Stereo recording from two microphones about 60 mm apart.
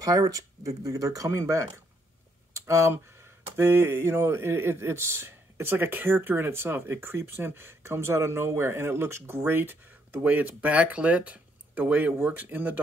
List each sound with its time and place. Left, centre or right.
0.0 s speech: right
2.5 s a sound: right
3.5 s speech: right